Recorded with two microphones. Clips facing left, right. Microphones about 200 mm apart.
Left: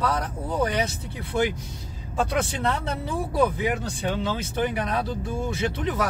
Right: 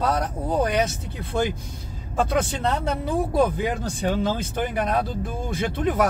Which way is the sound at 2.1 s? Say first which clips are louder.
Right 2 dB; 50° right (ahead or behind).